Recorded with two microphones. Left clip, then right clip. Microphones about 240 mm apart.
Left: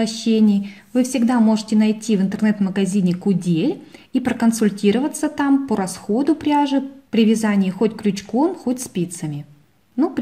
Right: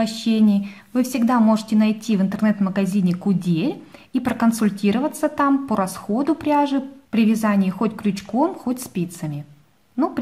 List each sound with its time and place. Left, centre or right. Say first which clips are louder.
0.0 s a woman's voice: left 2 dB; centre